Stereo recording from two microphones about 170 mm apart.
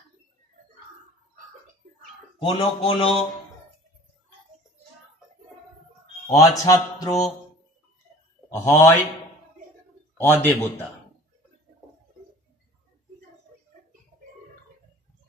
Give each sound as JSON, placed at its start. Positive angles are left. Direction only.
{"t": 2.4, "sound": "a man's voice", "side_deg": 30}
{"t": 6.3, "sound": "speech", "side_deg": 20}
{"t": 8.5, "sound": "a man's voice", "side_deg": 15}
{"t": 10.1, "sound": "a man's voice", "side_deg": 10}